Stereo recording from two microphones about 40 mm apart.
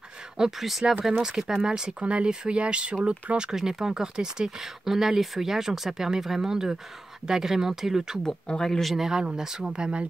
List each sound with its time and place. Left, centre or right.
0.6 s speech: centre
1.0 s speech: centre
3.4 s speech: centre
8.5 s speech: centre
8.8 s speech: centre; by 10.0 s right